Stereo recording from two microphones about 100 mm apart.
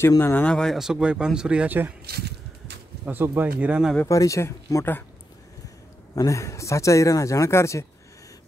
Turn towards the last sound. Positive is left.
turn(degrees=30)  # may be behind; listen again after turning